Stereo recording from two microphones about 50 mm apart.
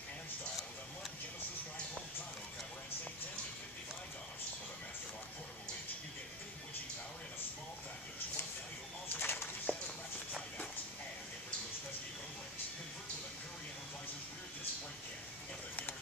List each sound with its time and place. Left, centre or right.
9.1 s bird: left
9.7 s walk: centre